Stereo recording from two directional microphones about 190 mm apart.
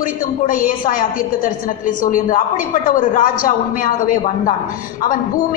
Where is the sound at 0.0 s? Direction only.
45° left (ahead or behind).